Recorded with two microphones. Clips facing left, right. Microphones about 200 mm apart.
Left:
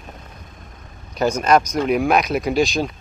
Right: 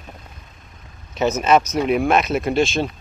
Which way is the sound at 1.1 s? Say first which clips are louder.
Even; 5° right (ahead or behind).